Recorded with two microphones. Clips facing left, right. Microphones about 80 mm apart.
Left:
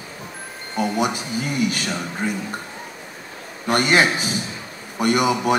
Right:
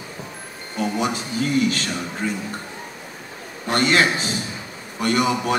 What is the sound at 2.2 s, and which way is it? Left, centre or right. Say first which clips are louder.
Speech: left 1 dB; left.